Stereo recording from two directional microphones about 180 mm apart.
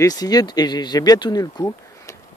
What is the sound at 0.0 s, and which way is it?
Speech, 20° left (ahead or behind).